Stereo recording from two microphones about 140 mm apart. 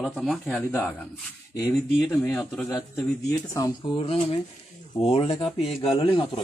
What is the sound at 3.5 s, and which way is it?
Speech, 25° left (ahead or behind).